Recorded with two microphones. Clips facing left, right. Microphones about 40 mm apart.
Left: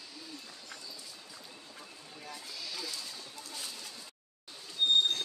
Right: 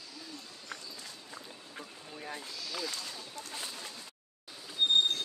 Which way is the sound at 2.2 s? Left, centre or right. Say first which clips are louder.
Right 5 dB; right.